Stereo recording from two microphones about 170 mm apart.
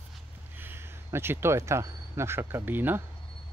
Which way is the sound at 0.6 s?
15° right (ahead or behind).